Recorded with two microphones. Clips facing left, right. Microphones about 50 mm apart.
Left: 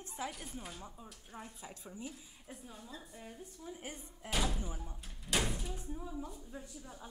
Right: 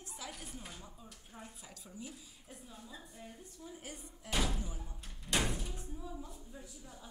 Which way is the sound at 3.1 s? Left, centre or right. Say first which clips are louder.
Left 2 dB; centre.